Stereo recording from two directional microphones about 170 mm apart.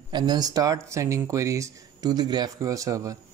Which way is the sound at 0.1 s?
25° right (ahead or behind).